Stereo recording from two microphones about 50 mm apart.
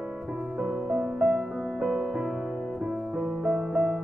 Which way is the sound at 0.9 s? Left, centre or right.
Centre.